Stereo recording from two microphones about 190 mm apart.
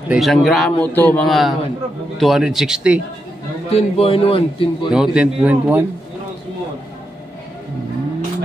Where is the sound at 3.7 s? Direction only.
30° left (ahead or behind).